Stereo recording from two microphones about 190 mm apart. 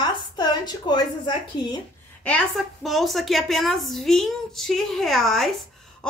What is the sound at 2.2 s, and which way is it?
A woman's voice, 5° left (ahead or behind).